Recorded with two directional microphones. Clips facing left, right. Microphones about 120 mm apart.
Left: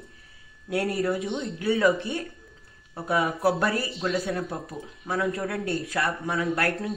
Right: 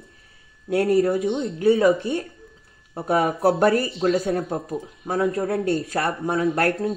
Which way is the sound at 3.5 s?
35° right (ahead or behind).